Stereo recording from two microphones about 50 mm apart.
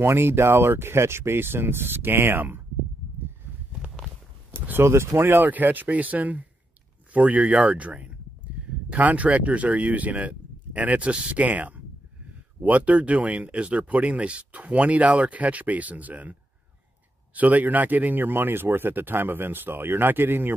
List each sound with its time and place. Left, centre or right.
0.0 s a man's voice: right
4.5 s speech: right
5.2 s speech: right
8.6 s a sound: centre
8.9 s a man's voice: right